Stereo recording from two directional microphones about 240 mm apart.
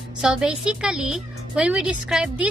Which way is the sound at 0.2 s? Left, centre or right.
Centre.